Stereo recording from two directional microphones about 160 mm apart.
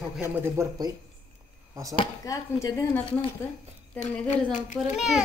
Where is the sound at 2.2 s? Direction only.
20° left (ahead or behind).